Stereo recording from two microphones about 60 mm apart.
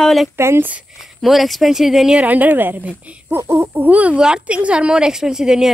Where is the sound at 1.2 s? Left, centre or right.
Centre.